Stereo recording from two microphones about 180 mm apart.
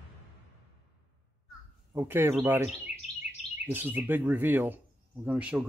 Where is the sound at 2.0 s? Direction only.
15° right (ahead or behind).